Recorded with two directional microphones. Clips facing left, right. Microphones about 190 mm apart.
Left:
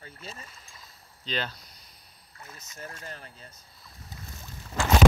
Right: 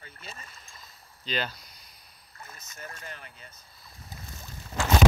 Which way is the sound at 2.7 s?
35° left (ahead or behind).